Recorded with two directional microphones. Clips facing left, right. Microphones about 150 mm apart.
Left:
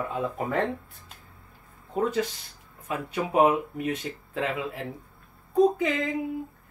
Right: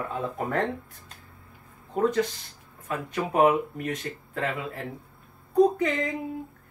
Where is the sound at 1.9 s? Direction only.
5° left (ahead or behind).